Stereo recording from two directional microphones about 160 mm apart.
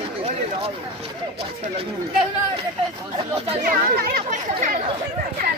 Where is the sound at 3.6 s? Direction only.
70° right (ahead or behind).